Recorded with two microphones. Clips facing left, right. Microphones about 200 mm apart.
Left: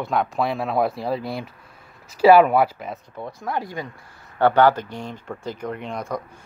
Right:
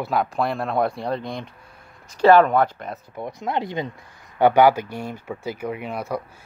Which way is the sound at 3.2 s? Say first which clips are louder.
Right 3 dB; 20° right (ahead or behind).